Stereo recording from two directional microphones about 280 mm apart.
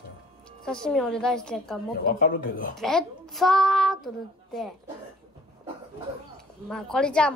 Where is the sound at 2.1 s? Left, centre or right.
Left.